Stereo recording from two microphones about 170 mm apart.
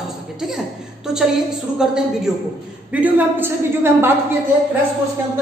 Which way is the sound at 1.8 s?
5° right (ahead or behind).